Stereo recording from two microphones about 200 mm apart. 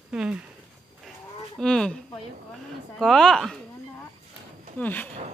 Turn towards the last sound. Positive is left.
turn(degrees=10)  # may be behind; listen again after turning